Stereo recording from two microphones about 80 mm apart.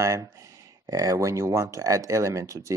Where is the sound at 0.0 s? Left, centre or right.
Right.